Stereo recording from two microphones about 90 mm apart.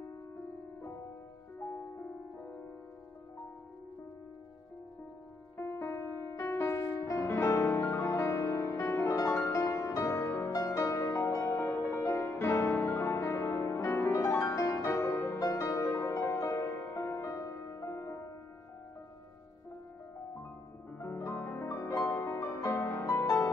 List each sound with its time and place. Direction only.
5.6 s music: 30° left (ahead or behind)
15.4 s music: 40° left (ahead or behind)
21.0 s music: 30° left (ahead or behind)
23.0 s music: 40° left (ahead or behind)